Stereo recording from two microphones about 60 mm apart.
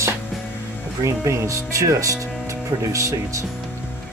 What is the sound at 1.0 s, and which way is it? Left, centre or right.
Speech, right.